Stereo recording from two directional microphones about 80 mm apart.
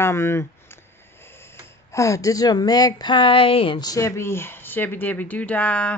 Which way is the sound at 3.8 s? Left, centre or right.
Left.